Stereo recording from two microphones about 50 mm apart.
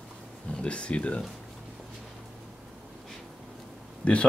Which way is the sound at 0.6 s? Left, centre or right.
Left.